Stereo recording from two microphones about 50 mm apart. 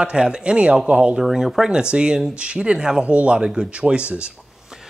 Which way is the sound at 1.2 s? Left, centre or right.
Centre.